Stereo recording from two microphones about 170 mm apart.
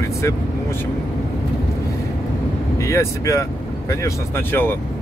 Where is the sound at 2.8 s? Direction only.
15° left (ahead or behind).